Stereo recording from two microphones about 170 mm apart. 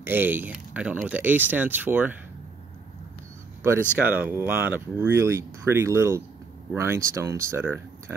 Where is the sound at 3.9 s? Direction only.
10° right (ahead or behind).